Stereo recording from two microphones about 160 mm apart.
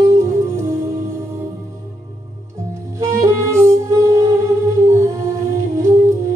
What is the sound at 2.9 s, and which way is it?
Music, 20° right (ahead or behind).